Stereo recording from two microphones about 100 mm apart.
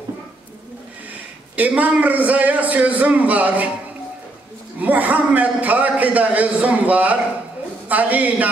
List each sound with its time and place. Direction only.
1.6 s a man's voice: 15° right (ahead or behind)
4.7 s a man's voice: 15° right (ahead or behind)